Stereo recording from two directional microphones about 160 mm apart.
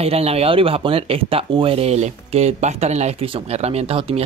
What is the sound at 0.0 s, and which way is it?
Speech, 40° right (ahead or behind).